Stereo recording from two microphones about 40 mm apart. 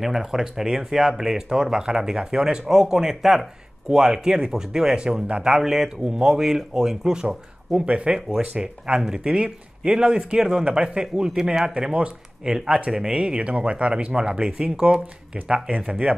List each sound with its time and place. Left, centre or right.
0.0 s speech: centre
7.2 s speech: right